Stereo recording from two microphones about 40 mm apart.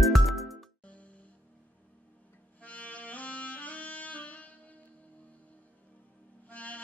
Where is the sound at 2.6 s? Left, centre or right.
Left.